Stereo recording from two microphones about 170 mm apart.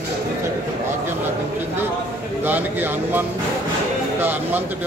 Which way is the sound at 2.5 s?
10° right (ahead or behind).